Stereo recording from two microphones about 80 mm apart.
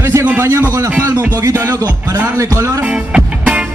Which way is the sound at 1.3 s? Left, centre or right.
Right.